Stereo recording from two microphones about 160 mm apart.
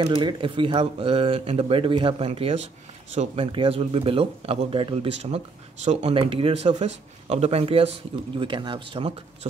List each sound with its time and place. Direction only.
0.0 s speech: 30° right (ahead or behind)